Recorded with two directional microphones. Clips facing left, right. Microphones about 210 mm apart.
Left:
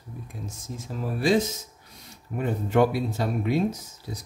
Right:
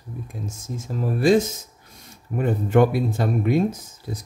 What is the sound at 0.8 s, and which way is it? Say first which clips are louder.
Speech: right 5 dB; 45° right (ahead or behind).